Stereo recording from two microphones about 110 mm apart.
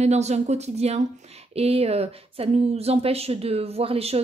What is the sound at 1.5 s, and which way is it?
A woman's voice, 65° right (ahead or behind).